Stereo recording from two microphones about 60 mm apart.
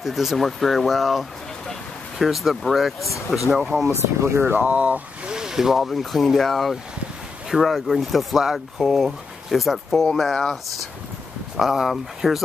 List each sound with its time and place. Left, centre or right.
0.0 s speech: centre
4.2 s speech: right
4.6 s speech: right; by 10.6 s centre
11.5 s speech: centre